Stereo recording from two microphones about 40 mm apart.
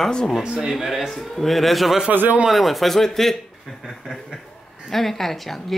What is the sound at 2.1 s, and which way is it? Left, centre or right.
Speech, right.